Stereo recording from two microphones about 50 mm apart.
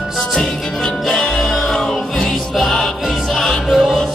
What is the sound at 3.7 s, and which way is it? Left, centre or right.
Music, centre.